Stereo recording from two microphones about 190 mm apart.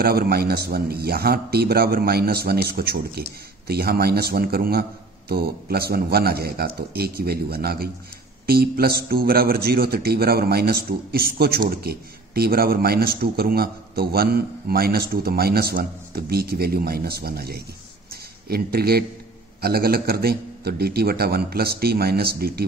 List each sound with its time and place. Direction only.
0.0 s a man's voice: 50° right (ahead or behind)
18.1 s a sound: 55° right (ahead or behind)
19.6 s a man's voice: 55° right (ahead or behind)